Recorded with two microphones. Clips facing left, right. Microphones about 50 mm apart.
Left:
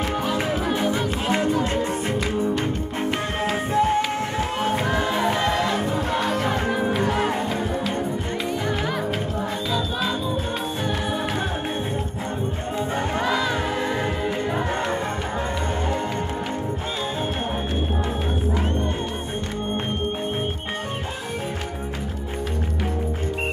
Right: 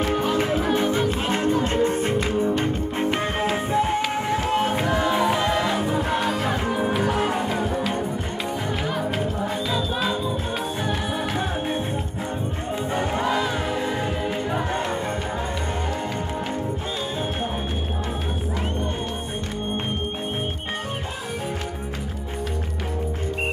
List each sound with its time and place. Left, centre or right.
0.7 s music: right
5.6 s music: centre
9.7 s music: centre
13.7 s music: left